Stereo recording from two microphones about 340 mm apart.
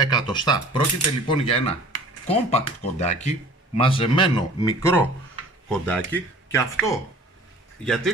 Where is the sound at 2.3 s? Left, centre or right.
Centre.